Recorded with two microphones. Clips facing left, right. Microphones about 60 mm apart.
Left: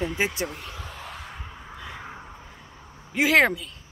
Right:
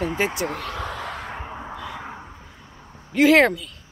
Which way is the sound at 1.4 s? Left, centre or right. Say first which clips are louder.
Right 8 dB; right.